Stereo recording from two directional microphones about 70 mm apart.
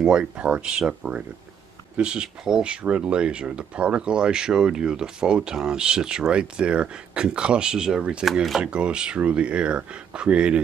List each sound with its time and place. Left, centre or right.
0.0 s speech: centre
8.3 s speech: centre
8.6 s speech: centre